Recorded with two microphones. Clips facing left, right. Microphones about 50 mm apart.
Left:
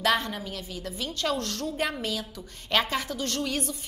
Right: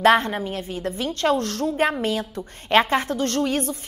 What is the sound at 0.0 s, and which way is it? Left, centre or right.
A woman's voice, right.